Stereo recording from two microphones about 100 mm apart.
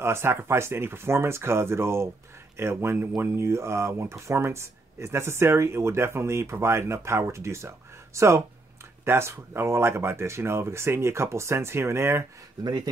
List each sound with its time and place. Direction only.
0.0 s speech: 25° right (ahead or behind)